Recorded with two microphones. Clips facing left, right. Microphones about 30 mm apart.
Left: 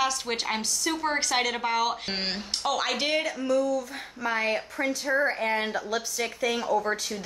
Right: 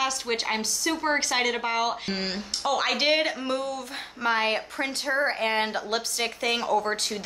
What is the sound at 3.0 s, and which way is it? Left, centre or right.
Speech, right.